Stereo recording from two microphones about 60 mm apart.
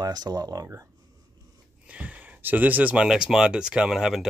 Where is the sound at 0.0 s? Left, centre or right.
Right.